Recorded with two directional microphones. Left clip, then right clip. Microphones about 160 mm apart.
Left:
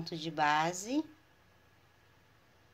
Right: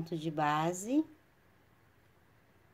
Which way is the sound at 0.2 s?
45° right (ahead or behind).